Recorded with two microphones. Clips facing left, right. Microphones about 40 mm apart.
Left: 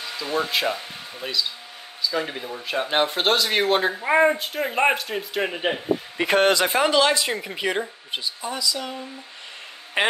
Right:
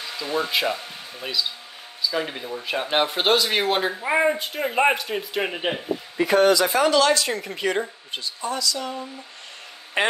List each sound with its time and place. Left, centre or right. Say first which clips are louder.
0.0 s speech: even; centre
6.1 s speech: right 2 dB; left
6.8 s speech: right 1 dB; left
10.0 s speech: even; centre